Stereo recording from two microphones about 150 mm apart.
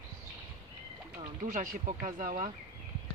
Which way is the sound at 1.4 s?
60° right (ahead or behind).